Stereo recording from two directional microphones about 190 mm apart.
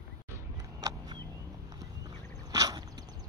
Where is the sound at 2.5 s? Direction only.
20° right (ahead or behind).